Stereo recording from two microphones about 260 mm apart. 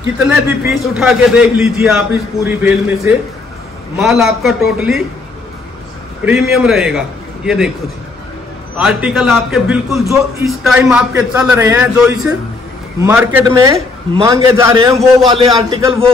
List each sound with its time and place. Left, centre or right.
0.0 s a man's voice: centre
6.2 s a man's voice: centre
8.7 s a man's voice: centre